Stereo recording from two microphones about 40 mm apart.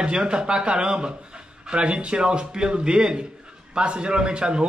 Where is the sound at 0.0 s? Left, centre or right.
Right.